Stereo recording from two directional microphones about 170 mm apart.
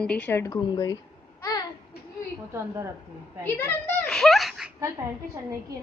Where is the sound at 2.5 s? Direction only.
15° right (ahead or behind).